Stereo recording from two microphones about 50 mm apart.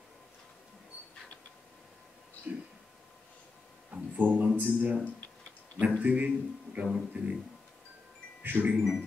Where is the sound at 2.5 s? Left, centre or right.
Right.